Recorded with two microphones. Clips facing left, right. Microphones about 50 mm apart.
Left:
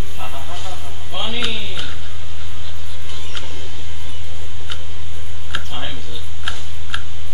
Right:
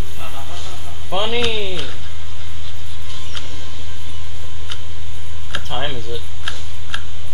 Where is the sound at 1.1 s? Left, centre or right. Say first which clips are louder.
Right 7 dB; right.